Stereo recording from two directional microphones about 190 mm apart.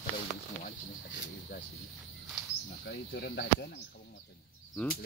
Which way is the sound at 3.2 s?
60° left (ahead or behind).